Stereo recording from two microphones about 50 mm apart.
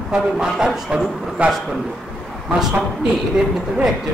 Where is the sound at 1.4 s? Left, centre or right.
Right.